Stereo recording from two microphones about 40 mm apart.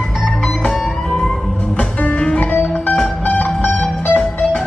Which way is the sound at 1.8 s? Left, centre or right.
Left.